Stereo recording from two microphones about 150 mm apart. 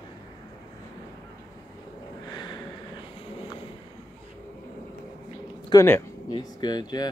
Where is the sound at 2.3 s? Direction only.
30° left (ahead or behind).